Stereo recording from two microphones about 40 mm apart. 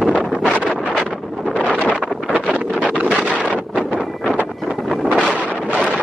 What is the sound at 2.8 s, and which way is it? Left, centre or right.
Wind noise, left.